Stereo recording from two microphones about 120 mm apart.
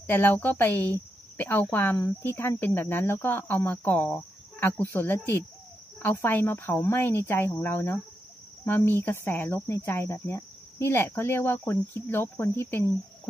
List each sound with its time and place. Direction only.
0.0 s speech: 15° left (ahead or behind)